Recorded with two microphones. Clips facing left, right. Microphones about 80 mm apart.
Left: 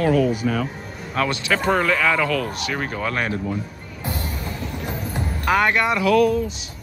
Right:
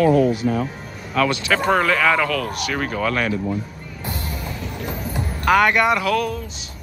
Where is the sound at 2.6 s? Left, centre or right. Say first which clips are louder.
Right 2 dB; left.